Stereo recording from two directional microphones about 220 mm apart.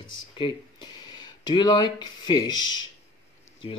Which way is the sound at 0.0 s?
20° left (ahead or behind).